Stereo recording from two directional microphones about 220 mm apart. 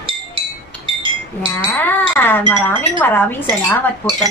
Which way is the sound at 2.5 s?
10° left (ahead or behind).